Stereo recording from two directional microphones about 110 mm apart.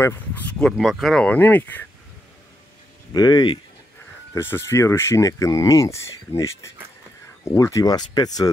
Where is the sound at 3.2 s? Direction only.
40° left (ahead or behind).